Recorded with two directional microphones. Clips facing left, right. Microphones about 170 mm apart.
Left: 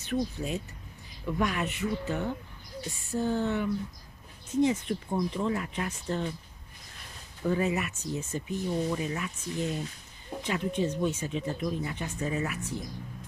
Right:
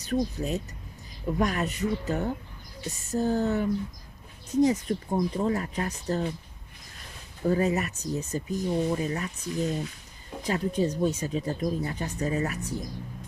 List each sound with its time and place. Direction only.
0.0 s speech: 40° right (ahead or behind)
7.4 s speech: 40° right (ahead or behind)